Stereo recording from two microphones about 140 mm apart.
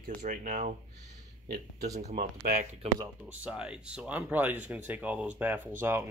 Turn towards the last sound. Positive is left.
turn(degrees=-15)  # may be behind; listen again after turning